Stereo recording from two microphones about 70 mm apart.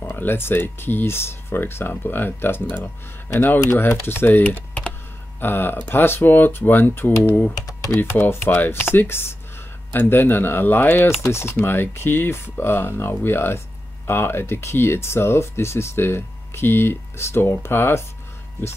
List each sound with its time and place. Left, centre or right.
0.0 s speech: left
7.6 s typing: left
8.0 s speech: left